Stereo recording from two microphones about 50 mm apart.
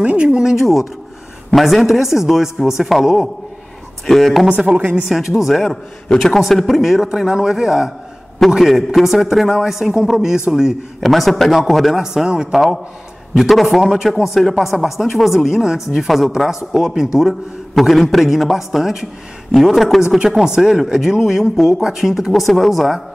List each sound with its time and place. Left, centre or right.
0.0 s a man's voice: right; by 4.5 s centre
4.5 s a woman's voice: right
5.0 s a man's voice: centre
11.0 s speech: centre
12.0 s a man's voice: centre
13.4 s a man's voice: centre